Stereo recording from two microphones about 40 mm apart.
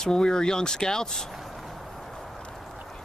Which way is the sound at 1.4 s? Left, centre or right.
Centre.